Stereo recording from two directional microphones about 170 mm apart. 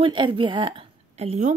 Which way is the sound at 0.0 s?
30° right (ahead or behind).